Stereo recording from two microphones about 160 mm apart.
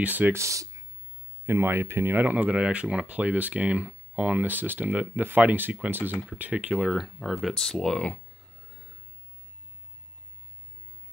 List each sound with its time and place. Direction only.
0.0 s speech: 10° right (ahead or behind); by 8.2 s 5° left (ahead or behind)